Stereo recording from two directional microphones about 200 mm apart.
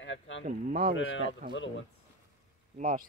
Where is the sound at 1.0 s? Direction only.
75° left (ahead or behind).